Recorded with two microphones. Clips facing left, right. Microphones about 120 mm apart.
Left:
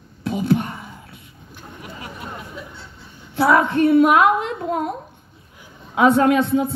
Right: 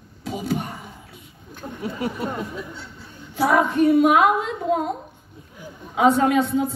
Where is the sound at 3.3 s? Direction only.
65° left (ahead or behind).